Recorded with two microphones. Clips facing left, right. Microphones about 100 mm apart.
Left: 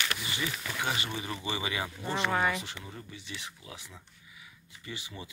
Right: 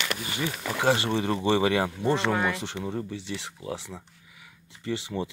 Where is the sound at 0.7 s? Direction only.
75° right (ahead or behind).